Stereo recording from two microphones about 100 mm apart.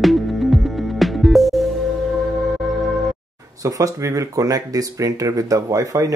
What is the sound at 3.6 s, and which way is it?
Speech, 35° right (ahead or behind).